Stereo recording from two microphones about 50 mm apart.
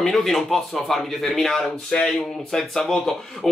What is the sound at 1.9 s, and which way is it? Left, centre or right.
Speech, left.